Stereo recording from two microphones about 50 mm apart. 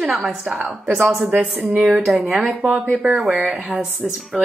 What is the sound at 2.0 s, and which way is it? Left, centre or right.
A woman's voice, centre.